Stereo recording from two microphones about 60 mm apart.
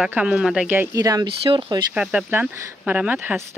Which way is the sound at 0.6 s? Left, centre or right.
Right.